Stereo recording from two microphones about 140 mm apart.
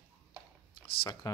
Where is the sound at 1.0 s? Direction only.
25° left (ahead or behind).